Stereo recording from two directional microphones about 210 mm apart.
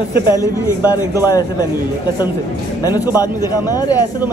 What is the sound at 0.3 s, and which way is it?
Speech, 15° left (ahead or behind).